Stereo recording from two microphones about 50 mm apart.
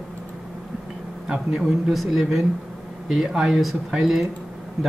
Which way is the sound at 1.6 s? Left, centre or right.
Centre.